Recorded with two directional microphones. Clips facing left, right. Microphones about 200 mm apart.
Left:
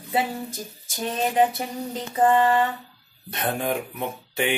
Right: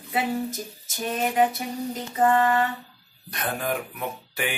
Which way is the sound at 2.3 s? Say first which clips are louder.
Left 2 dB; 25° left (ahead or behind).